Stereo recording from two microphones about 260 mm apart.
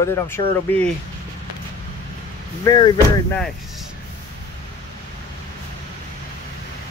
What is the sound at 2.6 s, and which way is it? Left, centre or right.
Speech, centre.